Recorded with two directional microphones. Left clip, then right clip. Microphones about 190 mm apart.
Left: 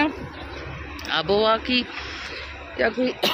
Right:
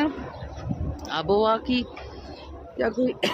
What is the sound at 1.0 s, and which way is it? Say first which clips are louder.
Speech: left 2 dB; 15° right (ahead or behind).